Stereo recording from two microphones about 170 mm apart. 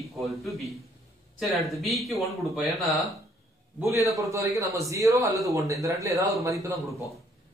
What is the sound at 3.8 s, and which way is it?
A man's voice, 15° right (ahead or behind).